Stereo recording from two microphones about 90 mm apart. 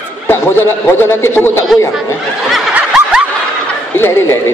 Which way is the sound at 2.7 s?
10° right (ahead or behind).